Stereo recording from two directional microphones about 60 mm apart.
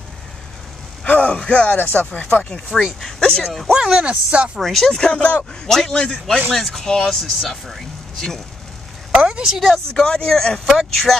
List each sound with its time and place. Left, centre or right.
1.0 s speech: left
1.8 s speech: left
3.4 s speech: centre
3.7 s speech: centre
4.6 s speech: centre
5.1 s speech: left
5.7 s speech: centre
9.1 s a woman's voice: centre
9.9 s speech: centre